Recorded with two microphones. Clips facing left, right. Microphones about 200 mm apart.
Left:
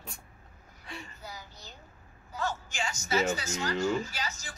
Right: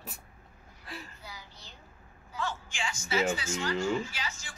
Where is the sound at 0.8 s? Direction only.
Centre (ahead or behind).